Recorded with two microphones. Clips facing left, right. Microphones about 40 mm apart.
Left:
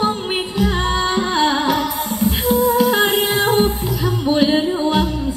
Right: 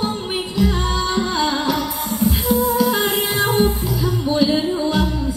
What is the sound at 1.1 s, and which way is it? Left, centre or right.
Music, left.